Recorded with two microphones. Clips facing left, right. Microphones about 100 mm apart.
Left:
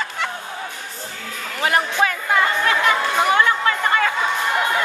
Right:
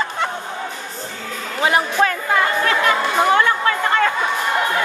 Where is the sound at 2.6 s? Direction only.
15° left (ahead or behind).